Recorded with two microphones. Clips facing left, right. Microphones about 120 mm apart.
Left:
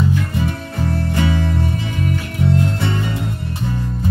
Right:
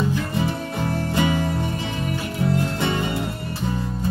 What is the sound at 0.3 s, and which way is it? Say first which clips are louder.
Music: left 1 dB; 20° right (ahead or behind).